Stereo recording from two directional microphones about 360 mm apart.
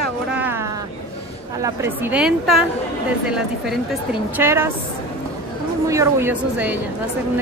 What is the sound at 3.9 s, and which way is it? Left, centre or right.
Speech, centre.